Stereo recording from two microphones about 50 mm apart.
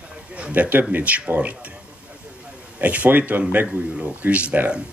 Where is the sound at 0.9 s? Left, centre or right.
Right.